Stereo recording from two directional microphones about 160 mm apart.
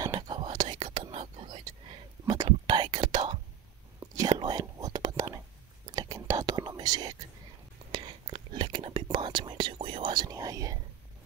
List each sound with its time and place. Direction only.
0.0 s whispering: 25° right (ahead or behind)